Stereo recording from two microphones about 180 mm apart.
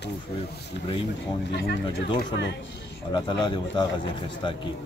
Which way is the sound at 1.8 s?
30° left (ahead or behind).